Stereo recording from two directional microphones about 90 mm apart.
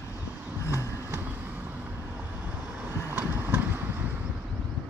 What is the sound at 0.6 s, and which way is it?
Vehicle, 35° left (ahead or behind).